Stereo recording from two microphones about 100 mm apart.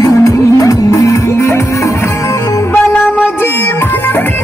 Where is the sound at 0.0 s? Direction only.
35° left (ahead or behind).